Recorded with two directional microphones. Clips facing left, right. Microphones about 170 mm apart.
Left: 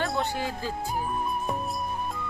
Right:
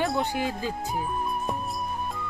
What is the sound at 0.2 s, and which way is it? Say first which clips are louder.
Speech: right 2 dB; 15° right (ahead or behind).